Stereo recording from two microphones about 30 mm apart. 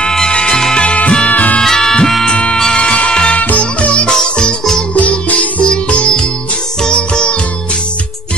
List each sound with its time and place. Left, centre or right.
0.3 s music: left
0.7 s music: left
1.3 s music: left
1.6 s music: centre
2.2 s music: left
3.3 s music: left
4.1 s music: left
5.6 s music: left